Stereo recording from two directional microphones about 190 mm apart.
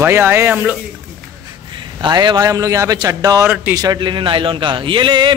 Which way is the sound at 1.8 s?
25° right (ahead or behind).